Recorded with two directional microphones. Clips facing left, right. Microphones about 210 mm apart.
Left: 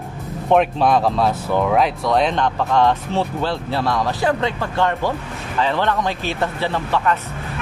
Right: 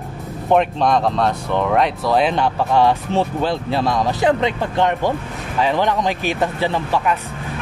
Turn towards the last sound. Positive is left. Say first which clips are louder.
# right 1 dB
turn(degrees=-10)  # may be behind; listen again after turning